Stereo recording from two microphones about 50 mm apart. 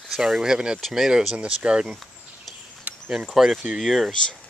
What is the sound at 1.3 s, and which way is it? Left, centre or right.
Speech, right.